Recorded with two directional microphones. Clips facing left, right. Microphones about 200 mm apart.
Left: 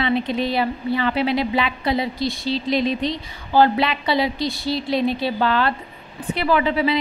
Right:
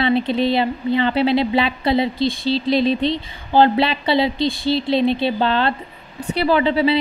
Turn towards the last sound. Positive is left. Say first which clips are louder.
# right 3 dB
turn(degrees=-30)  # may be behind; listen again after turning